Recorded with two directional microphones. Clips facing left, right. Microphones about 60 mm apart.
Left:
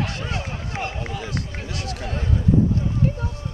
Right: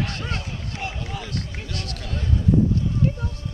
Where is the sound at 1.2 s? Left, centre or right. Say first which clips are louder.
Left 2 dB; centre.